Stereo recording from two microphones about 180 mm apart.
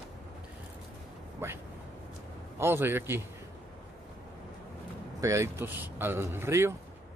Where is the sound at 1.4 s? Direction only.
15° right (ahead or behind).